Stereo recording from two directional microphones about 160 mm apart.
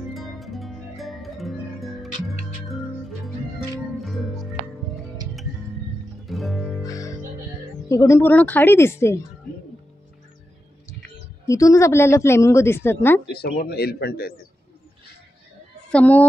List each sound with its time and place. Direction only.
0.1 s music: centre (ahead or behind)
6.2 s music: centre (ahead or behind)
6.8 s music: 20° left (ahead or behind)
7.9 s a woman's voice: 20° left (ahead or behind)
11.4 s a woman's voice: 20° left (ahead or behind)
13.3 s a man's voice: 80° left
15.9 s a woman's voice: 10° left (ahead or behind)